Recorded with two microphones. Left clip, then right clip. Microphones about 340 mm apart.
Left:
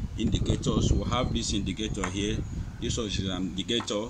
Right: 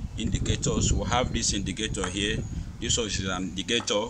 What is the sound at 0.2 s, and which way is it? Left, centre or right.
Speech, right.